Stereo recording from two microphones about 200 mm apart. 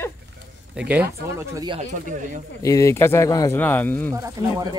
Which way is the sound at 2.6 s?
15° left (ahead or behind).